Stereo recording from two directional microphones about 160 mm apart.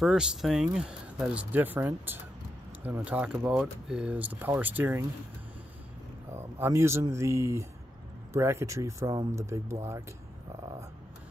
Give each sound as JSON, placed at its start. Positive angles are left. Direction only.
{"t": 0.0, "sound": "speech", "side_deg": -5}
{"t": 6.3, "sound": "speech", "side_deg": -15}